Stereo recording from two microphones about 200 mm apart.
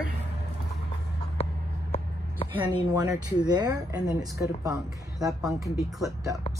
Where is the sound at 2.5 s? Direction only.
20° right (ahead or behind).